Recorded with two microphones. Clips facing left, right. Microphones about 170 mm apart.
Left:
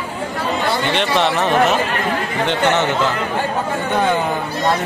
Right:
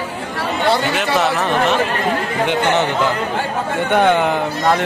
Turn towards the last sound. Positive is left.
turn(degrees=-65)  # may be behind; listen again after turning